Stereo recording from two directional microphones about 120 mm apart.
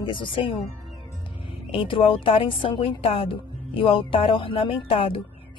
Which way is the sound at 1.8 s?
45° left (ahead or behind).